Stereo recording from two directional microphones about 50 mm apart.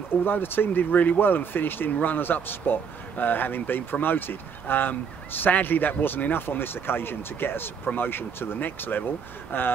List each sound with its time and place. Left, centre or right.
0.1 s speech: left